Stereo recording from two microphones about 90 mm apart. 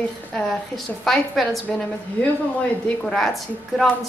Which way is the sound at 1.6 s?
15° left (ahead or behind).